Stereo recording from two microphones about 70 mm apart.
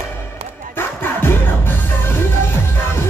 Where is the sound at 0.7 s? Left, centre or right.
Left.